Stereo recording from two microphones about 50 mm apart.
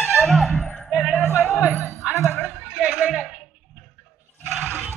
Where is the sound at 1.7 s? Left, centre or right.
Left.